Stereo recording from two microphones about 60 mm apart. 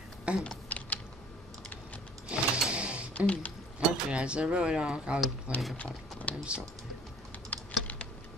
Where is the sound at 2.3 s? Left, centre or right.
Centre.